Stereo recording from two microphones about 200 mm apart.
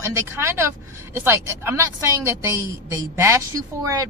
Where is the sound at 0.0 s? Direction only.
15° right (ahead or behind).